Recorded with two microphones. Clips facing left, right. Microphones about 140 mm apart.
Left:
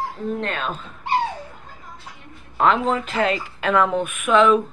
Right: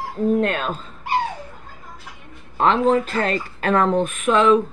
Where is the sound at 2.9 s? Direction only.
40° right (ahead or behind).